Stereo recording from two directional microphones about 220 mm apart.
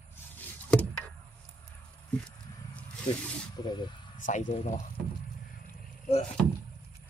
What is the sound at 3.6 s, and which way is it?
Speech, 20° left (ahead or behind).